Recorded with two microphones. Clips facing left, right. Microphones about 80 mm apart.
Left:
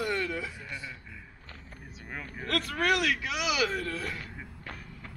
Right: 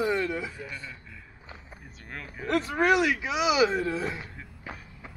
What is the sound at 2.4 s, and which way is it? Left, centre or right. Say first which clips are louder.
Speech: right 5 dB; centre.